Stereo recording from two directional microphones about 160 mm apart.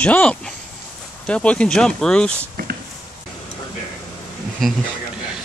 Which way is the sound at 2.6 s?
65° right (ahead or behind).